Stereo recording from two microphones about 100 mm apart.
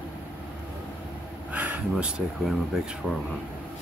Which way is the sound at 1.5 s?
15° right (ahead or behind).